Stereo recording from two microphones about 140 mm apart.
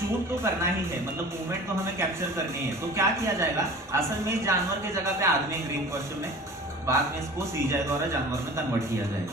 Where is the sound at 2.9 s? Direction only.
20° right (ahead or behind).